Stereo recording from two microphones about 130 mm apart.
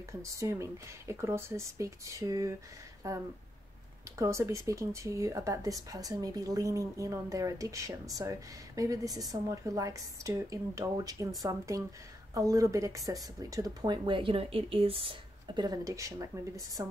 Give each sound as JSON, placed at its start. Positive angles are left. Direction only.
{"t": 0.2, "sound": "speech", "side_deg": -20}